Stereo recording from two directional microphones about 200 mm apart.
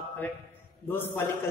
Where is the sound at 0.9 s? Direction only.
10° left (ahead or behind).